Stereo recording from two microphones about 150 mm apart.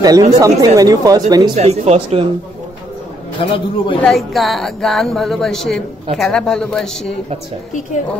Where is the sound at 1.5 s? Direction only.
45° right (ahead or behind).